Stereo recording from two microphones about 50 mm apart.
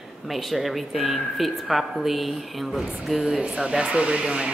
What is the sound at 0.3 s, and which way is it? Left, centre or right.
A woman's voice, centre.